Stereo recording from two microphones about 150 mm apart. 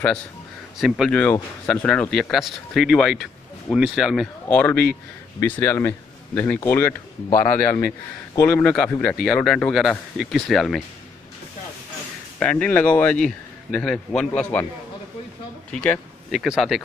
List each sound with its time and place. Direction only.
0.7 s speech: centre (ahead or behind)
12.4 s speech: 10° left (ahead or behind)
15.7 s speech: 5° left (ahead or behind)